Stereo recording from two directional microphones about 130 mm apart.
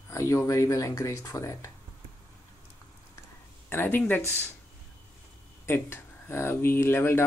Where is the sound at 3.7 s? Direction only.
15° left (ahead or behind).